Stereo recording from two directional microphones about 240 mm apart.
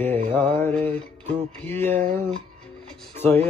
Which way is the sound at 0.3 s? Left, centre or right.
Centre.